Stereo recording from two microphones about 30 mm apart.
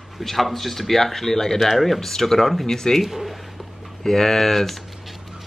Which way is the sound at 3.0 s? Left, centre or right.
Centre.